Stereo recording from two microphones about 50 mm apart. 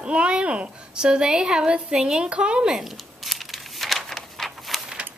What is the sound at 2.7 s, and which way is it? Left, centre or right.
Crumpling, centre.